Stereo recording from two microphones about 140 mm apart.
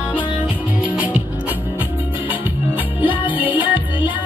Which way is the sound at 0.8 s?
10° right (ahead or behind).